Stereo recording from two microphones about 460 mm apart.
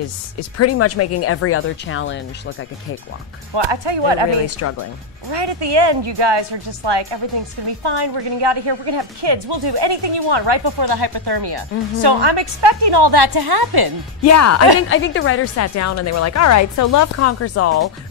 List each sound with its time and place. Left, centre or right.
0.4 s speech: left
3.5 s speech: right
5.3 s a woman's voice: right
14.2 s a woman's voice: left